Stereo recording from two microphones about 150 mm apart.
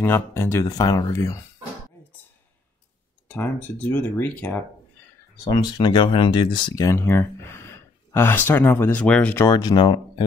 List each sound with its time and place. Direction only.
0.0 s speech: 15° left (ahead or behind)
3.3 s speech: 15° left (ahead or behind)
5.4 s speech: 30° left (ahead or behind)